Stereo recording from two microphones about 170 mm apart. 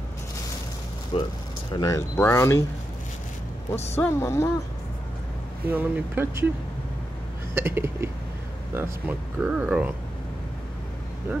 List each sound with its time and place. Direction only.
1.1 s speech: 30° left (ahead or behind)
1.7 s speech: 20° left (ahead or behind)
3.9 s speech: 15° left (ahead or behind)
5.7 s speech: 10° right (ahead or behind)
7.5 s speech: 15° right (ahead or behind)